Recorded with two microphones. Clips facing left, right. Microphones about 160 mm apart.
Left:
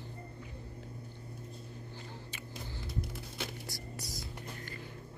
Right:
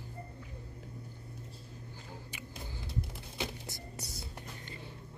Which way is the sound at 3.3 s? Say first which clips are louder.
Right 4 dB; 20° right (ahead or behind).